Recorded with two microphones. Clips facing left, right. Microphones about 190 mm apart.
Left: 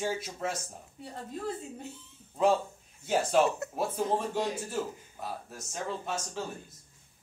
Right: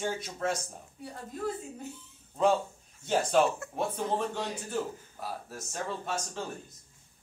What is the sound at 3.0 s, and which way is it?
Speech, 5° left (ahead or behind).